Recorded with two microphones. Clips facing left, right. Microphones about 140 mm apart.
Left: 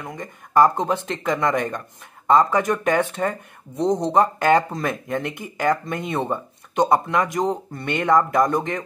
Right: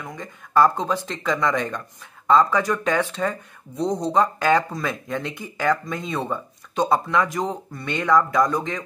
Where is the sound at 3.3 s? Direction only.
20° left (ahead or behind).